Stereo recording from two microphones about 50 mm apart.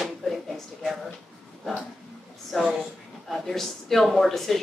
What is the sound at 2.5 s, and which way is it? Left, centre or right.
Speech, centre.